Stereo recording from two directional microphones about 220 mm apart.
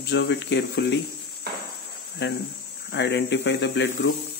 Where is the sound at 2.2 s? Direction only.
55° left (ahead or behind).